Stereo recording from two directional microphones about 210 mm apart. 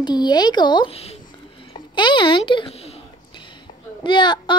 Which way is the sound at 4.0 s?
20° left (ahead or behind).